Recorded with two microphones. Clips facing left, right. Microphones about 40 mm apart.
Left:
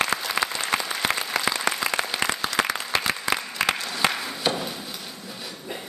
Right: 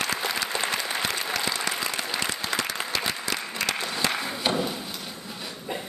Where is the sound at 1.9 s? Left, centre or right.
Left.